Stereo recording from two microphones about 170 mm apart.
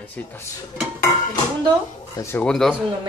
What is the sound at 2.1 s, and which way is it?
Speech, 15° left (ahead or behind).